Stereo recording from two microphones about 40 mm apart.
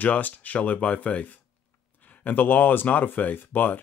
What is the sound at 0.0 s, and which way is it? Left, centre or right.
Speech, left.